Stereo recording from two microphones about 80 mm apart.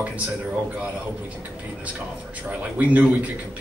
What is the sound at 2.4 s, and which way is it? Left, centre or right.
Speech, centre.